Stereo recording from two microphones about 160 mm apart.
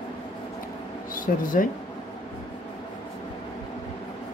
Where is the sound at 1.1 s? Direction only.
60° left (ahead or behind).